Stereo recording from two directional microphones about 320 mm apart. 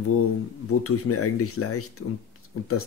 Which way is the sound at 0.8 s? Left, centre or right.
Left.